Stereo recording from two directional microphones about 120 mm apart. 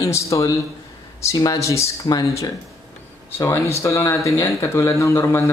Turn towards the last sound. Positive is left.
turn(degrees=25)  # may be behind; listen again after turning